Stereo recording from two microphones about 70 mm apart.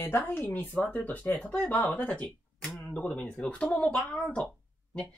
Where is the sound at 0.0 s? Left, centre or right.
Left; by 4.5 s centre.